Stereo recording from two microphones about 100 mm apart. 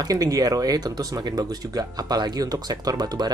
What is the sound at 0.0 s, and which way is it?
Speech, 40° right (ahead or behind).